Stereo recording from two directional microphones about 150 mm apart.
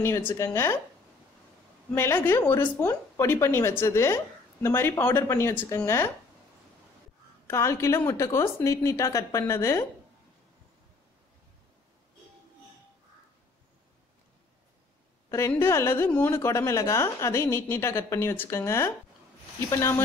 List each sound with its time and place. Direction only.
0.0 s a woman's voice: 15° left (ahead or behind)
2.0 s a woman's voice: 15° left (ahead or behind)
7.4 s a woman's voice: 20° left (ahead or behind)
15.3 s a woman's voice: 15° left (ahead or behind)